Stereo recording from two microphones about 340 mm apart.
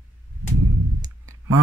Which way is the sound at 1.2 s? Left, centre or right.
Right.